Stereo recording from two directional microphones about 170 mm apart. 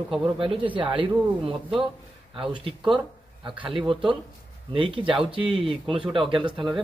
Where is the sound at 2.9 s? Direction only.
5° right (ahead or behind).